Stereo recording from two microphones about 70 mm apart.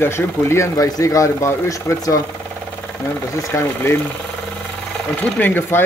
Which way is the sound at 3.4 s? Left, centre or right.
Left.